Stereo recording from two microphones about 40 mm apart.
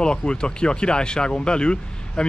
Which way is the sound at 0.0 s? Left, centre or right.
Left.